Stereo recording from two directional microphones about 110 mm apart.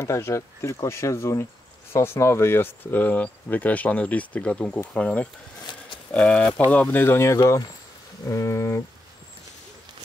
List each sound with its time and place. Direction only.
0.0 s speech: 25° left (ahead or behind)